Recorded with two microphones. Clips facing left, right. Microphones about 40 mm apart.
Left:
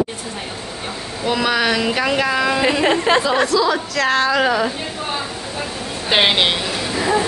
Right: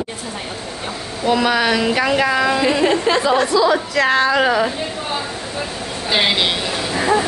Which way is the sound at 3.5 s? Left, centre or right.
Centre.